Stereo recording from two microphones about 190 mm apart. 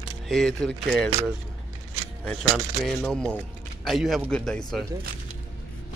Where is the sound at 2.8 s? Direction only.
Centre (ahead or behind).